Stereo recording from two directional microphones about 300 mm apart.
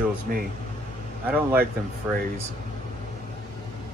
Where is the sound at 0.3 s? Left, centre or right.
Right.